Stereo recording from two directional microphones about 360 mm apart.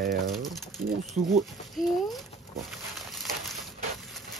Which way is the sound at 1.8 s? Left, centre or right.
Centre.